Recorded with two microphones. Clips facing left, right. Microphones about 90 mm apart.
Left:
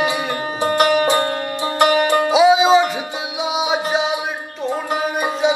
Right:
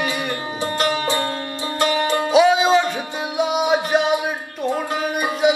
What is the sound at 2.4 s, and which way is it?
Music, 10° left (ahead or behind).